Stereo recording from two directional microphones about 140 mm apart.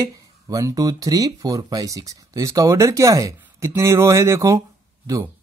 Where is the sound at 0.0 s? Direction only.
25° right (ahead or behind).